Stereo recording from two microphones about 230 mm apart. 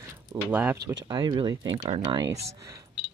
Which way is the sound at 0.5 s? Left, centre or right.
Centre.